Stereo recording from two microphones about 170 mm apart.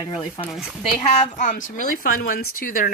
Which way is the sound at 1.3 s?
50° left (ahead or behind).